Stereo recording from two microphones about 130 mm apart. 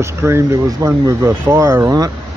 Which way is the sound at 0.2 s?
20° right (ahead or behind).